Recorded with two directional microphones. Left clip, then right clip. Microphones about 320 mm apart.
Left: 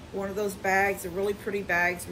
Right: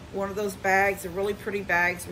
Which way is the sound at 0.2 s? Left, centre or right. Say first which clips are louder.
Right 2 dB; centre.